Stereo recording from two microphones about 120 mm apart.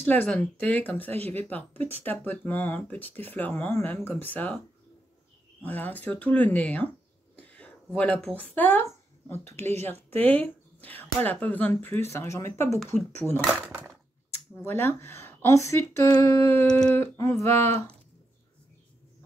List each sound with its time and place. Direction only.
0.0 s speech: 15° left (ahead or behind)
5.6 s speech: 15° left (ahead or behind)
13.7 s a sound: 15° right (ahead or behind)
14.5 s speech: 20° left (ahead or behind)